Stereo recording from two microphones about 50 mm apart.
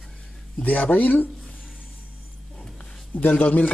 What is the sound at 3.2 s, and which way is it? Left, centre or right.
Speech, left.